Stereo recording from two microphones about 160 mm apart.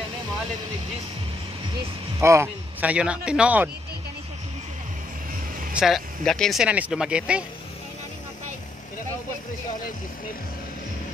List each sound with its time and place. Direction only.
2.1 s speech: 15° right (ahead or behind)
5.8 s speech: centre (ahead or behind)